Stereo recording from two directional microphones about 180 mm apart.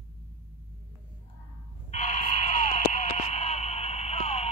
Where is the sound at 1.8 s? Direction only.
40° left (ahead or behind).